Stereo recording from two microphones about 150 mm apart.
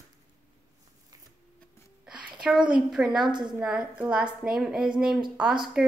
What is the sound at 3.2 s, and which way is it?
Speech, 30° right (ahead or behind).